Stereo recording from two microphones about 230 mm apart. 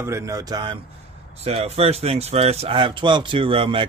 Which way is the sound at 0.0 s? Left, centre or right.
Centre.